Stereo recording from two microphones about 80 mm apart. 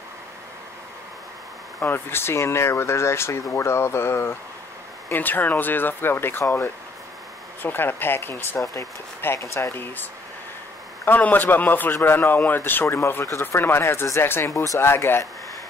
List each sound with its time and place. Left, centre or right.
1.8 s a man's voice: left
11.1 s a man's voice: left